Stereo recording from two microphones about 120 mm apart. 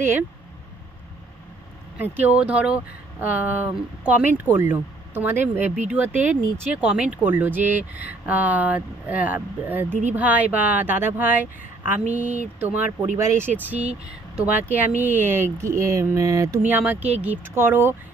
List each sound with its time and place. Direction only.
2.1 s speech: 10° right (ahead or behind)
16.6 s speech: 15° right (ahead or behind)